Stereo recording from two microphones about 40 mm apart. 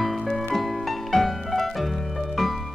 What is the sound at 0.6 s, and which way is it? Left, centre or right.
Music, centre.